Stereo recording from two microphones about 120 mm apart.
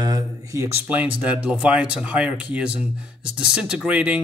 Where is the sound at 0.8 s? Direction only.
10° right (ahead or behind).